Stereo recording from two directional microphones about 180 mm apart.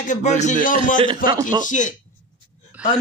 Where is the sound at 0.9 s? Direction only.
25° right (ahead or behind).